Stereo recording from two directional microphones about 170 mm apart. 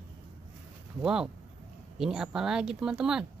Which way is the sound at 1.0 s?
5° right (ahead or behind).